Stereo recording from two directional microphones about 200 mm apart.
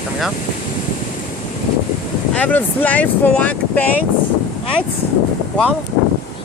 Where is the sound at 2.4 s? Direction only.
5° left (ahead or behind).